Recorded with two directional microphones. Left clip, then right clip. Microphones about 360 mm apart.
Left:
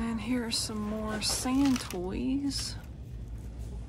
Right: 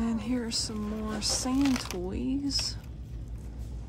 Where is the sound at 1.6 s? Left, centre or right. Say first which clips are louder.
Even; right.